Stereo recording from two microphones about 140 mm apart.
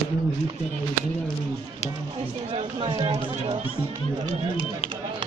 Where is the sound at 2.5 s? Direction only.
35° right (ahead or behind).